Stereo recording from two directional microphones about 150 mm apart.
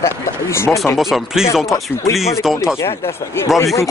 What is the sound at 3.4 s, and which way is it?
Speech, 15° left (ahead or behind).